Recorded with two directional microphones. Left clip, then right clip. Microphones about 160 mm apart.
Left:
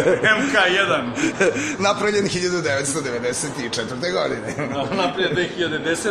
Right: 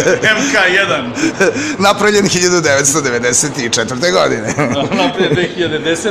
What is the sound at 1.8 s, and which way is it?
A man's voice, 45° right (ahead or behind).